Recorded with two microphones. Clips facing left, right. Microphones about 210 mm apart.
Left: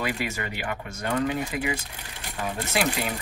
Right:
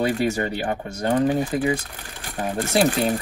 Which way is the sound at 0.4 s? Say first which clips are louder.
Right 7 dB; 35° right (ahead or behind).